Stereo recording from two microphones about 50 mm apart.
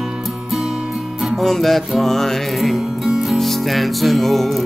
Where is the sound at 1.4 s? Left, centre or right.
Centre.